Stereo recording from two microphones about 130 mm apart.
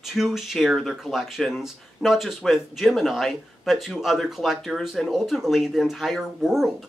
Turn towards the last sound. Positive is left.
turn(degrees=0)  # may be behind; listen again after turning